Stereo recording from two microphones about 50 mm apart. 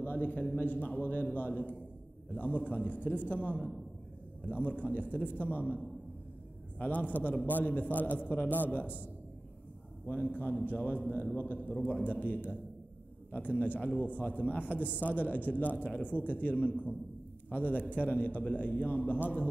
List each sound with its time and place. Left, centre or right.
0.0 s a man's voice: left
13.6 s a man's voice: left